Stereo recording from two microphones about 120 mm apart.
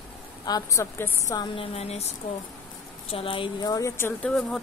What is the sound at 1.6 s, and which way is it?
Speech, 55° left (ahead or behind).